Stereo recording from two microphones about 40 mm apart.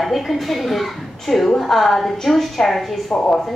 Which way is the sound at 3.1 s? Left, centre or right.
Left.